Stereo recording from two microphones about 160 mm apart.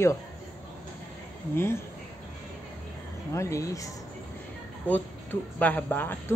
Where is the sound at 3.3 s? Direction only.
20° left (ahead or behind).